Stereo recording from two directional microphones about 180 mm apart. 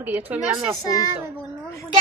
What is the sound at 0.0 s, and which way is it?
Speech, 10° right (ahead or behind).